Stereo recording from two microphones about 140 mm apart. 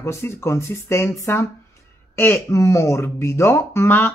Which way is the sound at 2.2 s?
20° left (ahead or behind).